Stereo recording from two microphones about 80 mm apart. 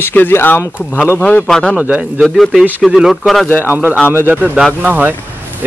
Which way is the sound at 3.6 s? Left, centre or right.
Right.